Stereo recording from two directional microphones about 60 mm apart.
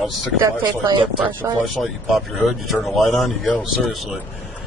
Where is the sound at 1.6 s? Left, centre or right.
Centre.